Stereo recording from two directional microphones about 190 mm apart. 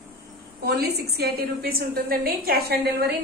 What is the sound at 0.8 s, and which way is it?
A woman's voice, 55° right (ahead or behind).